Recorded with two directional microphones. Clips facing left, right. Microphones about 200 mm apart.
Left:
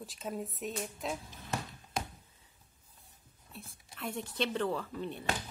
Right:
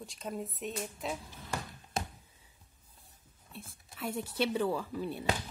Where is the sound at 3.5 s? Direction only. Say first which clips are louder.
Right 1 dB; centre (ahead or behind).